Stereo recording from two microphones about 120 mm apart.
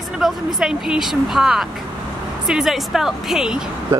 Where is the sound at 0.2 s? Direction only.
Centre (ahead or behind).